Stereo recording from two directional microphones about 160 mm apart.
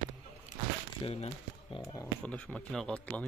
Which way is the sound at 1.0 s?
35° left (ahead or behind).